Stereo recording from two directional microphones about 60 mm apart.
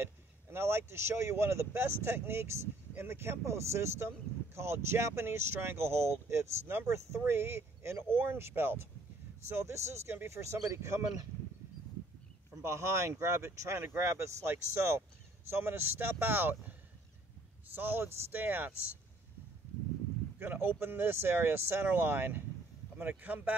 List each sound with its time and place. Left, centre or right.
0.0 s speech: right
9.5 s speech: right
12.6 s speech: right
17.7 s speech: right
20.3 s speech: right